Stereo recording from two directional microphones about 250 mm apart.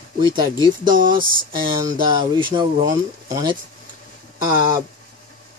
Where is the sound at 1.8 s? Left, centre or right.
Centre.